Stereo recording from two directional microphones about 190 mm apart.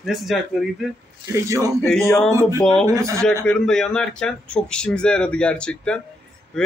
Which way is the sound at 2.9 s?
15° right (ahead or behind).